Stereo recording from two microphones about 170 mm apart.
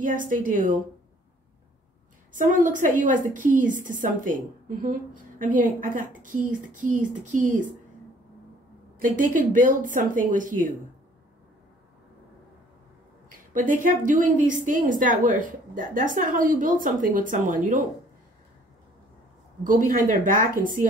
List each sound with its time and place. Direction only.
0.0 s a woman's voice: 50° right (ahead or behind)
2.3 s a woman's voice: 50° right (ahead or behind)
9.0 s a woman's voice: 55° right (ahead or behind)
13.3 s a woman's voice: 55° right (ahead or behind)
19.6 s a woman's voice: 55° right (ahead or behind)